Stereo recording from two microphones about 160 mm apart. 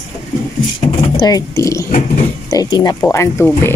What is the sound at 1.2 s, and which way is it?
A woman's voice, 25° left (ahead or behind).